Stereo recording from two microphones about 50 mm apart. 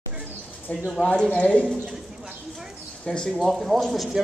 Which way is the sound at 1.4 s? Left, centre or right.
Left.